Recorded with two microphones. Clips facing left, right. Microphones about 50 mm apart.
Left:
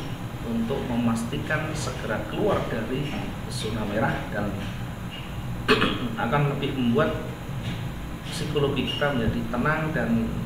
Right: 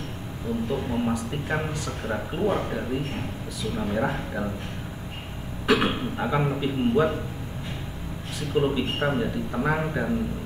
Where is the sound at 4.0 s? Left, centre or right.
Centre.